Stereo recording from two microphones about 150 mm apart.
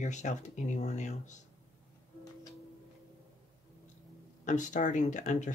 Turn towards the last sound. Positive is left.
turn(degrees=55)  # may be behind; listen again after turning